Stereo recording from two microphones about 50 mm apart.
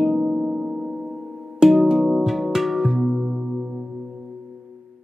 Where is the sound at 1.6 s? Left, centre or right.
Centre.